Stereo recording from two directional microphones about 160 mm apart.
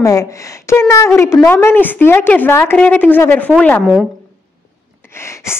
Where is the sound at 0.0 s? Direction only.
20° left (ahead or behind).